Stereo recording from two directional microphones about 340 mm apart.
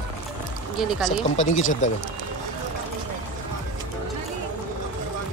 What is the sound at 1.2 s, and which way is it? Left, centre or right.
Speech, centre.